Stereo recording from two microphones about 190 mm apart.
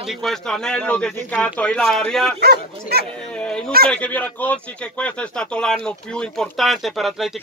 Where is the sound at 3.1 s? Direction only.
5° left (ahead or behind).